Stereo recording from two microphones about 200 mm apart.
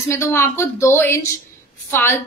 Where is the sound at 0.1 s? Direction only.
10° left (ahead or behind).